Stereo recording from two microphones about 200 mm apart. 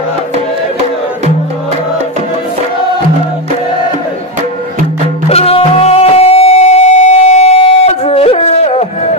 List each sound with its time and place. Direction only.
5.3 s music: 30° left (ahead or behind)